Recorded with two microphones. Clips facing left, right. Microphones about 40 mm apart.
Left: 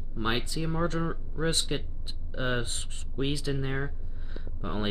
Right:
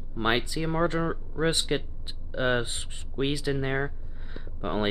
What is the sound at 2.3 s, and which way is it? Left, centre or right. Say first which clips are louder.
Speech: right 5 dB; right.